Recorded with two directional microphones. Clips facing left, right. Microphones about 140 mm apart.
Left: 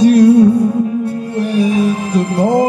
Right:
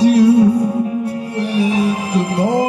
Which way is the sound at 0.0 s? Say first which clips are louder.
Left 3 dB; 45° left (ahead or behind).